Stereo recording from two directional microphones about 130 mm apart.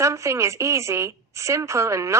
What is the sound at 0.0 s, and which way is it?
A woman's voice, 25° right (ahead or behind).